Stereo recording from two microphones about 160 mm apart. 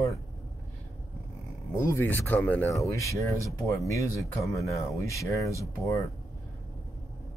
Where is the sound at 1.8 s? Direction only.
15° left (ahead or behind).